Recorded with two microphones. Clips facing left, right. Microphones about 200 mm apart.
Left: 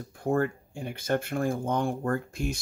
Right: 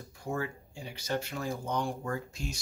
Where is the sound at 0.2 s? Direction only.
55° left (ahead or behind).